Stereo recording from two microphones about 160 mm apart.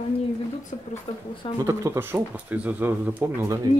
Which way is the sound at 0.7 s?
45° left (ahead or behind).